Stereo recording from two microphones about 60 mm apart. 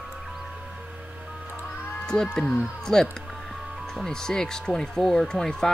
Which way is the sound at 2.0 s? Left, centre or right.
Centre.